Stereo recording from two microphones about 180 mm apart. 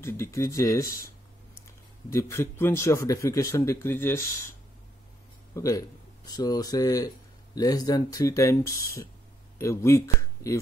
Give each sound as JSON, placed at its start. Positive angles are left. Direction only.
{"t": 0.0, "sound": "speech", "side_deg": 15}
{"t": 2.0, "sound": "speech", "side_deg": 15}
{"t": 5.5, "sound": "speech", "side_deg": 20}